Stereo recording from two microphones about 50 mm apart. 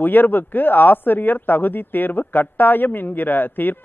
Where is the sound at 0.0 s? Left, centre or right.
Left.